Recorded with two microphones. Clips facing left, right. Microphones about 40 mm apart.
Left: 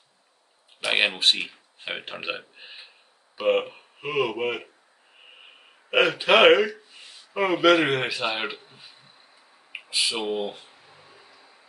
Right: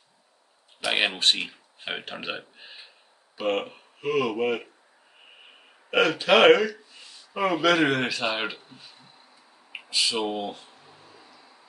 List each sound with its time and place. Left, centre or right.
0.8 s speech: centre
5.9 s speech: left
9.8 s a sound: centre